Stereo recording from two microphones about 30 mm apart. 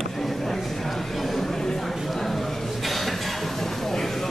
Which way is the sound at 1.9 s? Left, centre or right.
Centre.